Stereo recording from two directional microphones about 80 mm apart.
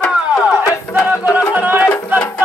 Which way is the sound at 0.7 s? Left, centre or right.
Left.